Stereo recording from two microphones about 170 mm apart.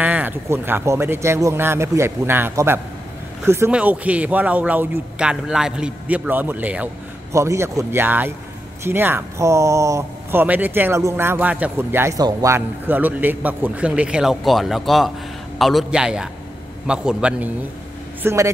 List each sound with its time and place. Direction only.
0.0 s a man's voice: 10° right (ahead or behind)
18.2 s speech: 15° right (ahead or behind)